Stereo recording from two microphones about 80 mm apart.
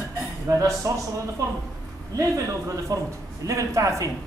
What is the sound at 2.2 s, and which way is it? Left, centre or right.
A man's voice, right.